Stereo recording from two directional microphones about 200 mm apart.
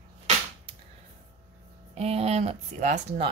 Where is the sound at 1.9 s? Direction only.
30° right (ahead or behind).